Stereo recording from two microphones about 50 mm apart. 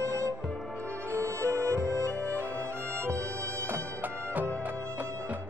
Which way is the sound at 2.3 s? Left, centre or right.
Right.